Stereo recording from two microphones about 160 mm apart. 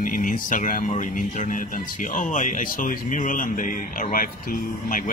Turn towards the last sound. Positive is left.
turn(degrees=60)  # may be behind; listen again after turning